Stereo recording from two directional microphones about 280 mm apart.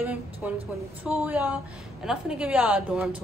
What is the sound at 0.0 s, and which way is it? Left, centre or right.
A woman's voice, centre.